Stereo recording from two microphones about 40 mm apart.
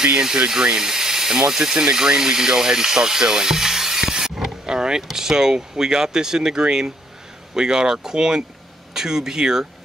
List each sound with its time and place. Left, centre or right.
0.2 s speech: centre